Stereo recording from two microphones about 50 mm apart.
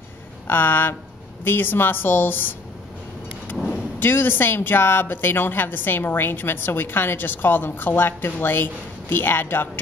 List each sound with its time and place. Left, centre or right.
0.5 s speech: left
3.7 s speech: left